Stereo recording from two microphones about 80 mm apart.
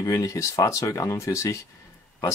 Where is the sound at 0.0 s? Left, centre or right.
Left.